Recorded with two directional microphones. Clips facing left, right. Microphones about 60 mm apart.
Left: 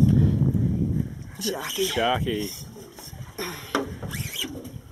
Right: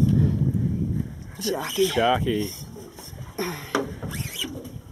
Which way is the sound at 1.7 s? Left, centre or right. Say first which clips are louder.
Right 3 dB; centre.